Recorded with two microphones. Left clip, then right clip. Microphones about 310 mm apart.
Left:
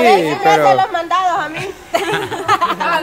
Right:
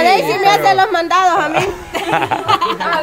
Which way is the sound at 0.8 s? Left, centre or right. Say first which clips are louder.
Right 3 dB; right.